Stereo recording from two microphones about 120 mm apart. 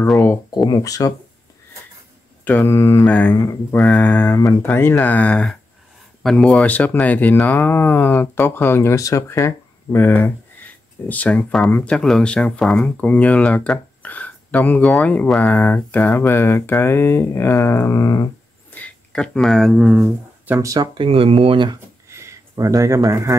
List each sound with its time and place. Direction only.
0.7 s mantra: 30° left (ahead or behind)
2.4 s mantra: 20° left (ahead or behind)
3.1 s speech: 10° left (ahead or behind); by 18.3 s 30° left (ahead or behind)
18.8 s speech: 5° left (ahead or behind)
20.1 s speech: 15° right (ahead or behind)
20.6 s speech: 30° right (ahead or behind)
21.0 s speech: 50° right (ahead or behind)
22.1 s a sound: 25° right (ahead or behind)